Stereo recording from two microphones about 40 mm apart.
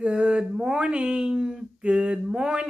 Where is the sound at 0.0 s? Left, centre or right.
Right.